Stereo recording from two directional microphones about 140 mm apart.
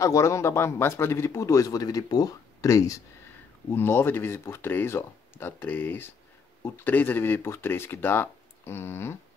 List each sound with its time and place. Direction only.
0.0 s a man's voice: 20° left (ahead or behind)